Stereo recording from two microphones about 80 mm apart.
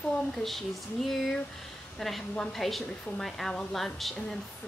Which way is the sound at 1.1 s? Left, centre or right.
Centre.